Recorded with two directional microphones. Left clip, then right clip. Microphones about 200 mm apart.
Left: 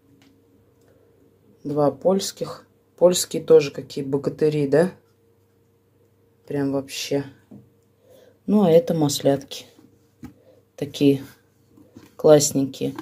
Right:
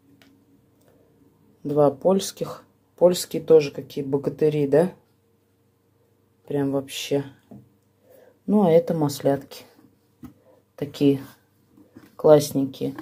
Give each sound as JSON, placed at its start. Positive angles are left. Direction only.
{"t": 1.6, "sound": "speech", "side_deg": -15}
{"t": 3.1, "sound": "speech", "side_deg": 0}
{"t": 6.4, "sound": "speech", "side_deg": -5}
{"t": 8.1, "sound": "speech", "side_deg": 0}
{"t": 10.8, "sound": "speech", "side_deg": 5}
{"t": 12.2, "sound": "speech", "side_deg": 5}